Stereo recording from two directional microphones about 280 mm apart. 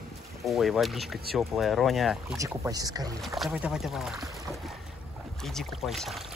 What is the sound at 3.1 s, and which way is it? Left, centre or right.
Speech, centre.